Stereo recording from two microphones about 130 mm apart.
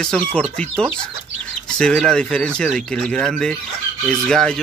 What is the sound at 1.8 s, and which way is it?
Speech, 5° left (ahead or behind).